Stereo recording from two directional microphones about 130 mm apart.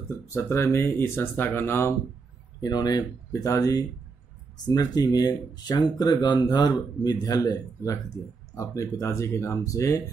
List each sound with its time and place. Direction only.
0.3 s speech: 20° left (ahead or behind)
2.6 s speech: 30° left (ahead or behind)